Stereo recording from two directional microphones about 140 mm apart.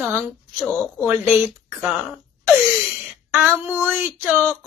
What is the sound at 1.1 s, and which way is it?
Speech, 10° right (ahead or behind).